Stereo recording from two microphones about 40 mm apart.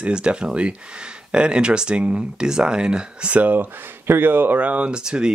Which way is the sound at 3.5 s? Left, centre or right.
Right.